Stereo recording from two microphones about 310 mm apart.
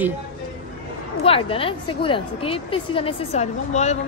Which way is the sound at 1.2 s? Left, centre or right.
Centre.